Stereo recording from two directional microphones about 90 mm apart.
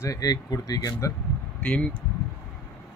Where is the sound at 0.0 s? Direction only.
40° left (ahead or behind).